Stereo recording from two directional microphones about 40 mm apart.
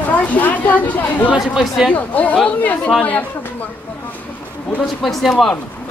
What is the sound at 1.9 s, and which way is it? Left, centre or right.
Speech, left.